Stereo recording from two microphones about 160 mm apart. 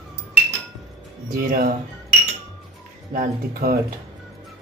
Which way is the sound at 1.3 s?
65° right (ahead or behind).